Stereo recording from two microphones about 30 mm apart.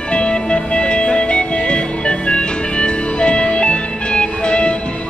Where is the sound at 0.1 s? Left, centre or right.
Left.